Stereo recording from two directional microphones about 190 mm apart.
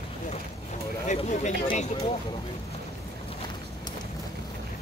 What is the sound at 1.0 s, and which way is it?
Speech, 40° left (ahead or behind).